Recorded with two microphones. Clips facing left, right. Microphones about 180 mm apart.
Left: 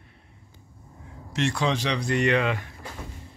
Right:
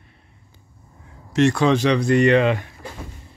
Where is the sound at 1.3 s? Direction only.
50° right (ahead or behind).